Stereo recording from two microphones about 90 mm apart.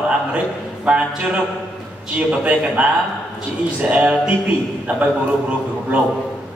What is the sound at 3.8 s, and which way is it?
A man's voice, 15° right (ahead or behind).